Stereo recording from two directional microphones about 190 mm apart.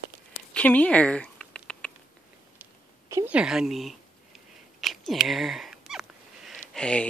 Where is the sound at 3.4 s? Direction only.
5° right (ahead or behind).